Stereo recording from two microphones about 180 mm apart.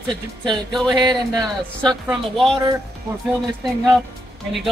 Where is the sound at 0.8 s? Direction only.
20° right (ahead or behind).